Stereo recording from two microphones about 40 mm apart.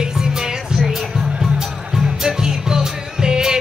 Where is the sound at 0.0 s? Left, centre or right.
Centre.